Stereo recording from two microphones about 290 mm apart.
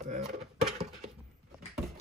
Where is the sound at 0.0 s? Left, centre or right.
Right.